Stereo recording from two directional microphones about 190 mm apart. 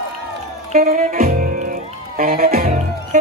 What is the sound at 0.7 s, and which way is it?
Music, 50° right (ahead or behind).